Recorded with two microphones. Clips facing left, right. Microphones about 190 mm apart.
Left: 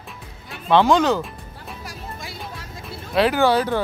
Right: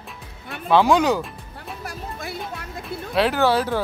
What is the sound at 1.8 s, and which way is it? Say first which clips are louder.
Music: right 4 dB; 55° right (ahead or behind).